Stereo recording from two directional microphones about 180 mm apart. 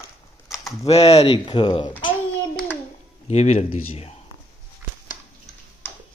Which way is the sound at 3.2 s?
40° left (ahead or behind).